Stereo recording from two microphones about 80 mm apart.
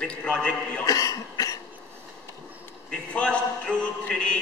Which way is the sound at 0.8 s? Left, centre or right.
Left.